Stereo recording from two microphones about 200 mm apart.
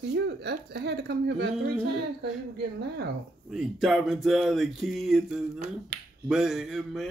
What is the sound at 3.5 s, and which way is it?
Speech, centre (ahead or behind).